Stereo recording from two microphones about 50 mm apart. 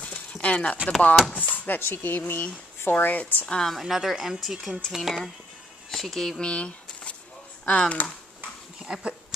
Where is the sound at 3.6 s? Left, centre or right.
Centre.